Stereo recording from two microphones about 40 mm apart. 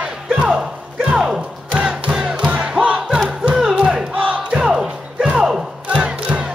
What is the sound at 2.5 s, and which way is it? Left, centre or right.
Crowd, right.